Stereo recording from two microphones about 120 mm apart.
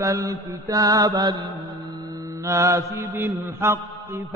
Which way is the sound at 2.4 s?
25° right (ahead or behind).